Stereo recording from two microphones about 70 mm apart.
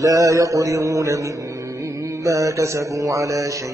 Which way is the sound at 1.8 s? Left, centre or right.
Right.